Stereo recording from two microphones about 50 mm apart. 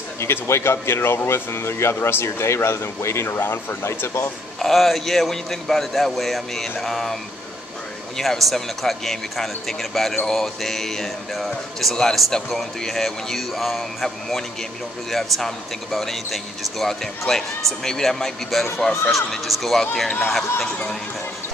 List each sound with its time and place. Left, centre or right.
0.2 s speech: left
3.3 s speech: left
4.6 s speech: centre
8.2 s speech: centre